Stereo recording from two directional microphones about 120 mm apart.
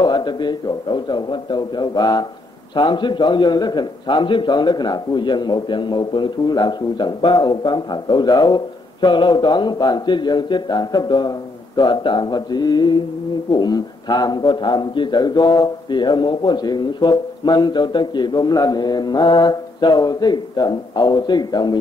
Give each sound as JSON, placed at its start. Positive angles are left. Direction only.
{"t": 0.0, "sound": "a man's voice", "side_deg": 40}